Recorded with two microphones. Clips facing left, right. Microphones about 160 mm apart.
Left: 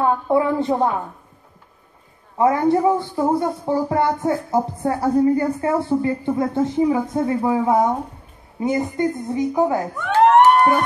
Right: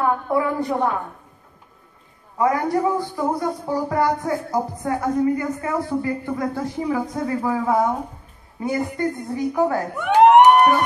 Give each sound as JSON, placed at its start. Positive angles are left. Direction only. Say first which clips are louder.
{"t": 0.0, "sound": "a man's voice", "louder": "left 3 dB", "side_deg": 25}
{"t": 2.3, "sound": "a man's voice", "louder": "left 3 dB", "side_deg": 25}
{"t": 9.9, "sound": "speech", "louder": "right 2 dB", "side_deg": -15}